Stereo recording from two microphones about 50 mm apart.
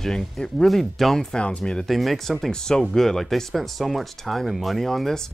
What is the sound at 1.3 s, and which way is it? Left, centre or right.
Speech, left.